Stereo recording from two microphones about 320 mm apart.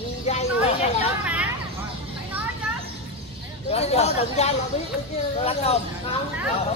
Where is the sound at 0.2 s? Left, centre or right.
Centre.